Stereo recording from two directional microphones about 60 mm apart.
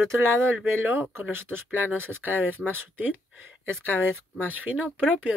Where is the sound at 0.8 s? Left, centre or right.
Right.